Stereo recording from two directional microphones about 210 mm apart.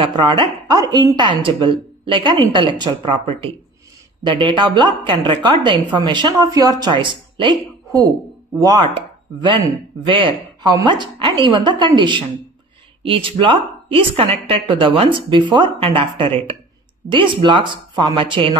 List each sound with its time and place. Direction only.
0.0 s a woman's voice: 25° right (ahead or behind)
10.0 s a woman's voice: 25° right (ahead or behind)